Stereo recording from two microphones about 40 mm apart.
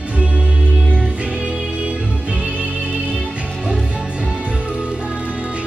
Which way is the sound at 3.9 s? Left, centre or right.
Right.